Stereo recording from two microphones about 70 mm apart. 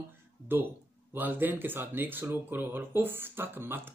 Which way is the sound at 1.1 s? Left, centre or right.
Right.